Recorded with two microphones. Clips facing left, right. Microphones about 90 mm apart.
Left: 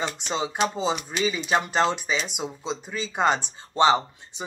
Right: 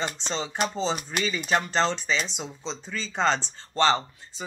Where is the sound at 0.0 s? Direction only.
10° left (ahead or behind).